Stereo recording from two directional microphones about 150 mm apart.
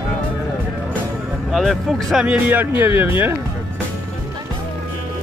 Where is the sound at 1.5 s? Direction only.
Centre (ahead or behind).